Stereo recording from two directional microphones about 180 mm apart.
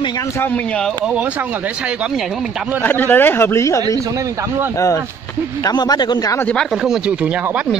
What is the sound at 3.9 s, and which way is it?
Speech, 20° right (ahead or behind).